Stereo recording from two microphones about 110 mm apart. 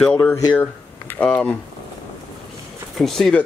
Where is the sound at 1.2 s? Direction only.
15° left (ahead or behind).